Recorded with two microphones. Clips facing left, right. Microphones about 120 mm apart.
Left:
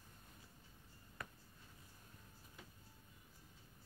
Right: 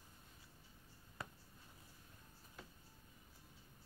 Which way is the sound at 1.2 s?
25° right (ahead or behind).